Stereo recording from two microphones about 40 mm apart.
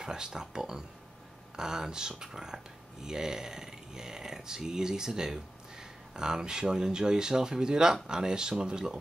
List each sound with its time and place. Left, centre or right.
0.0 s speech: centre